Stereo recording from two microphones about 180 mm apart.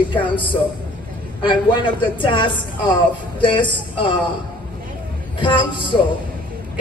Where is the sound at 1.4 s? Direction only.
25° left (ahead or behind).